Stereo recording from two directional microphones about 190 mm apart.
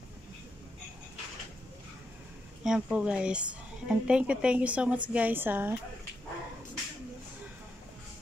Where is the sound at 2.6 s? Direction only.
5° right (ahead or behind).